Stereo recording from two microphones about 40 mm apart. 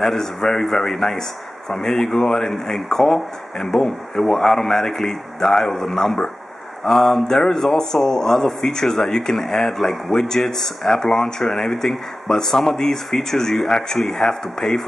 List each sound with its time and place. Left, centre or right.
0.0 s speech: centre